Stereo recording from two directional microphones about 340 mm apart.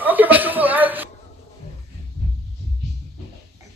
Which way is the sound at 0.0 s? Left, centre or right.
Centre.